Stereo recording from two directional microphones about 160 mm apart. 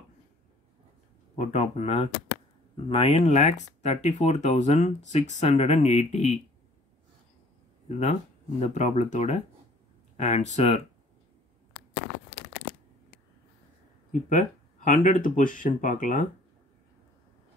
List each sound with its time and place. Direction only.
1.4 s speech: 45° left (ahead or behind)
7.9 s speech: 45° left (ahead or behind)
14.3 s speech: 50° left (ahead or behind)